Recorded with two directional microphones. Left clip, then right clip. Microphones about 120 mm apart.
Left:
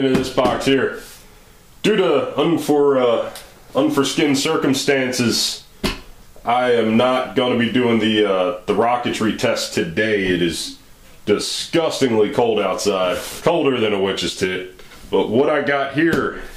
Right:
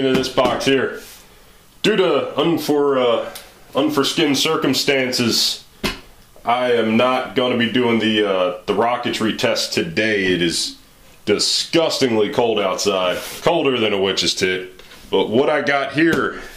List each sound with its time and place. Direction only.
0.3 s speech: 25° right (ahead or behind)
1.9 s speech: 25° right (ahead or behind)
5.8 s a sound: 5° right (ahead or behind)
6.4 s speech: 10° right (ahead or behind)
9.9 s speech: 30° right (ahead or behind)